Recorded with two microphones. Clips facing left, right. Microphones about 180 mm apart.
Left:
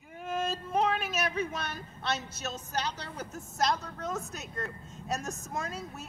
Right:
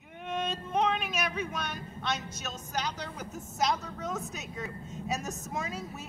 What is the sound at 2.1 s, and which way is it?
A woman's voice, 10° right (ahead or behind).